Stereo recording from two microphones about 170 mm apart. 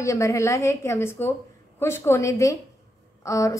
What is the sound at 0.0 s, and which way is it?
A woman's voice, 20° left (ahead or behind).